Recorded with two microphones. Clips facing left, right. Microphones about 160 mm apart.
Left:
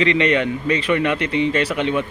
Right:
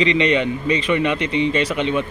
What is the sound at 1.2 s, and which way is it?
Speech, 50° left (ahead or behind).